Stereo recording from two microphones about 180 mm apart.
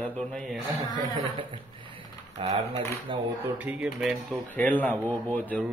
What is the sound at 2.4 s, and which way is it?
Speech, 30° right (ahead or behind).